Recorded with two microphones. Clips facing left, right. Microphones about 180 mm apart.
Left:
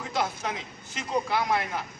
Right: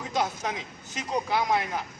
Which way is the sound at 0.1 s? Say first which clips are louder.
Right 1 dB; 15° right (ahead or behind).